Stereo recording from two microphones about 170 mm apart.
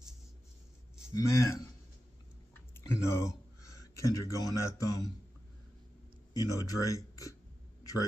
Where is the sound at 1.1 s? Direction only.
20° left (ahead or behind).